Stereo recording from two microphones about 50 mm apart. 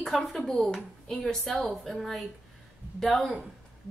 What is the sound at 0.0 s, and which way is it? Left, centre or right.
A woman's voice, centre.